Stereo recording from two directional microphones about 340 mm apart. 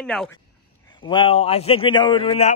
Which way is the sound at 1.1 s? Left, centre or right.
Centre.